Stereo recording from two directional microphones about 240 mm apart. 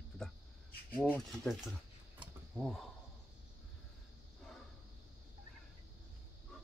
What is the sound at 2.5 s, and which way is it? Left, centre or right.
Speech, centre.